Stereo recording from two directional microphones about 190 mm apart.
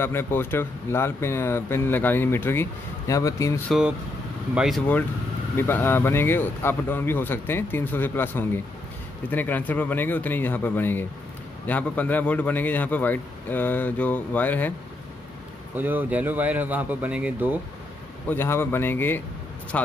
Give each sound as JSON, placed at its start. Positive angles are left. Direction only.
{"t": 0.0, "sound": "speech", "side_deg": 10}
{"t": 4.6, "sound": "speech", "side_deg": 0}
{"t": 15.7, "sound": "speech", "side_deg": -10}
{"t": 18.3, "sound": "speech", "side_deg": 10}